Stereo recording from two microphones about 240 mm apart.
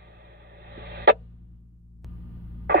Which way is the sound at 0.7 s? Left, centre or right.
Right.